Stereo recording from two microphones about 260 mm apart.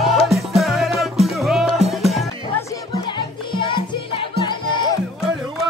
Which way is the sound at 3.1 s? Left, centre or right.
Centre.